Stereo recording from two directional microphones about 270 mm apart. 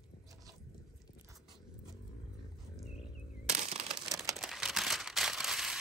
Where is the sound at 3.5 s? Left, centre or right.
Right.